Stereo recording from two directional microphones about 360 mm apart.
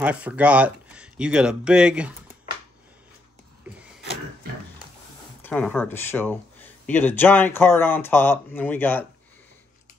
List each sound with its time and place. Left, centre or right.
0.0 s speech: centre
5.4 s speech: centre